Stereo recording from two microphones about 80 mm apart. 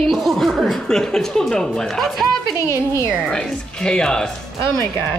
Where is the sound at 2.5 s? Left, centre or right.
Left.